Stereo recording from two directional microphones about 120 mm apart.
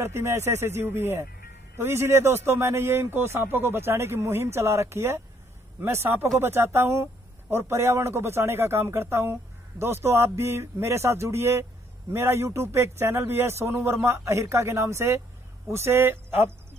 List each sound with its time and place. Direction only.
0.0 s a man's voice: 20° right (ahead or behind)